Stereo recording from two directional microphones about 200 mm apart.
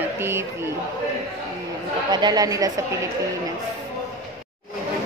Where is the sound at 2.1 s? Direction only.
20° right (ahead or behind).